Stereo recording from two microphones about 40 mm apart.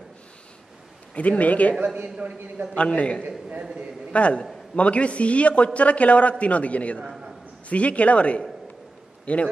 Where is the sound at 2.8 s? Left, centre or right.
Left.